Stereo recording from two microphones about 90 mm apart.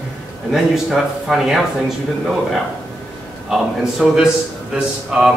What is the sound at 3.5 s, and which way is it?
A man's voice, 5° right (ahead or behind).